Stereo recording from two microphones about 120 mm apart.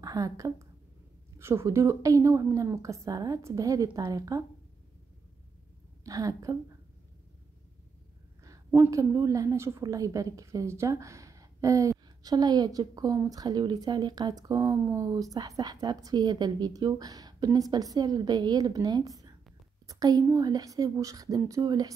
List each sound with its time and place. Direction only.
0.0 s a woman's voice: 30° right (ahead or behind)
6.0 s a woman's voice: 30° right (ahead or behind)
8.9 s a woman's voice: 25° right (ahead or behind)